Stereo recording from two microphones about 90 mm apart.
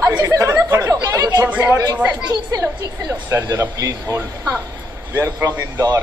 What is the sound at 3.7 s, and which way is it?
Speech, 40° right (ahead or behind).